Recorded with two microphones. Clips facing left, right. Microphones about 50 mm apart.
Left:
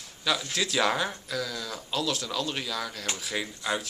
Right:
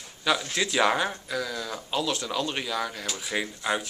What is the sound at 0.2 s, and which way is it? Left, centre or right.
Speech, centre.